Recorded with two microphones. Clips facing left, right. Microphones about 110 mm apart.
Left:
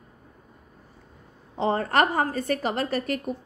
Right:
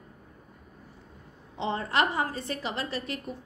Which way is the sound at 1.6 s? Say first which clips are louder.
Left 5 dB; 45° left (ahead or behind).